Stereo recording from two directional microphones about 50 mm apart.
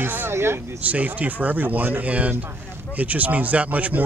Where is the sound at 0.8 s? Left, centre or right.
Right.